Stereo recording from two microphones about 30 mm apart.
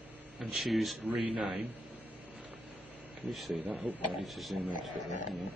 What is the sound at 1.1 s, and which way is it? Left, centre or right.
Speech, right.